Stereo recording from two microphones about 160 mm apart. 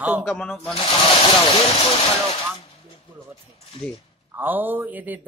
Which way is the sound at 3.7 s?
30° left (ahead or behind).